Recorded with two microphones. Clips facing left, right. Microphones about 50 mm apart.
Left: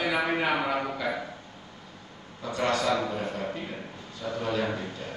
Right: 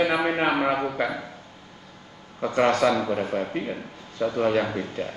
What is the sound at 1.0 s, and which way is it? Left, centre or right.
Speech, right.